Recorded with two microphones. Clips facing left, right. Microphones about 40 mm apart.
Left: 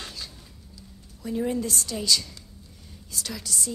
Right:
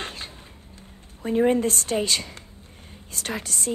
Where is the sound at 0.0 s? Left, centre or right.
Right.